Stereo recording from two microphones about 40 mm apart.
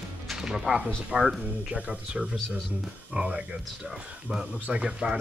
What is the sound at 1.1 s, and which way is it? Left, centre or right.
Speech, right.